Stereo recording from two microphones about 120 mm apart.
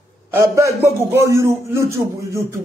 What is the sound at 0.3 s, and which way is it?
A man's voice, 25° right (ahead or behind).